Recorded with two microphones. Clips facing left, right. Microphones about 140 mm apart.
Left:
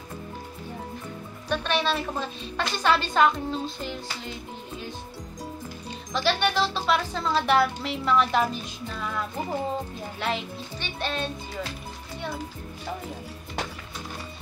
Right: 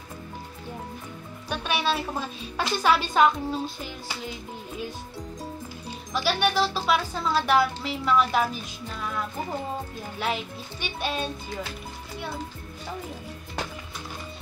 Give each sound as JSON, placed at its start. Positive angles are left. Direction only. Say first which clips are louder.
{"t": 1.5, "sound": "speech", "louder": "left 1 dB", "side_deg": -10}
{"t": 6.1, "sound": "speech", "louder": "even", "side_deg": -5}
{"t": 10.2, "sound": "speech", "louder": "even", "side_deg": -5}